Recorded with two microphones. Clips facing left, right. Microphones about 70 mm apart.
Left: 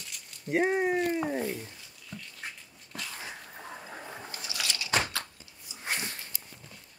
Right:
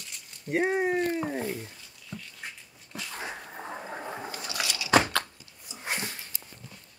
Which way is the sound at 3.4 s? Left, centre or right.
Right.